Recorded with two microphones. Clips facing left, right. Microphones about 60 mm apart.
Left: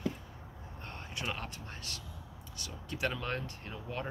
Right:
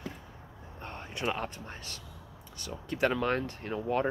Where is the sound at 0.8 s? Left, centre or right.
Right.